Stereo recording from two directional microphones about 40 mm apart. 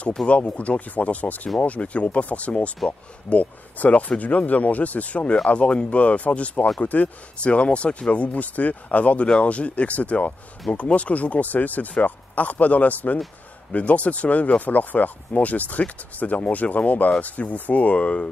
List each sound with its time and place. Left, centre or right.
0.2 s speech: centre
0.6 s speech: left